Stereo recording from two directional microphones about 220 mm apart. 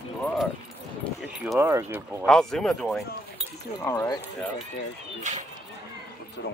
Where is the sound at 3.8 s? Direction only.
15° left (ahead or behind).